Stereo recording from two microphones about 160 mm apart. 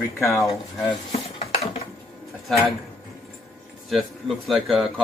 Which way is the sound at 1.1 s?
40° left (ahead or behind).